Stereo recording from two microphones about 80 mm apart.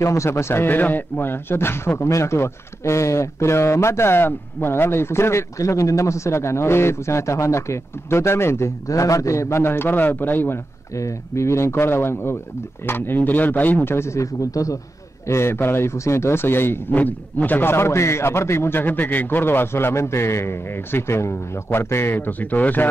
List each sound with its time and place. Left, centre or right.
0.0 s speech: left
11.0 s speech: left
15.2 s speech: left